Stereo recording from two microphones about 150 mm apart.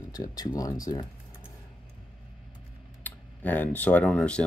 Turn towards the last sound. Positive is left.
turn(degrees=5)  # may be behind; listen again after turning